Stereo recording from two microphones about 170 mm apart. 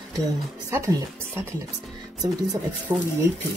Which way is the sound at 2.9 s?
25° right (ahead or behind).